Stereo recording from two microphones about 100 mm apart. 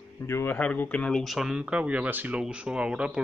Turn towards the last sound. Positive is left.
turn(degrees=-10)  # may be behind; listen again after turning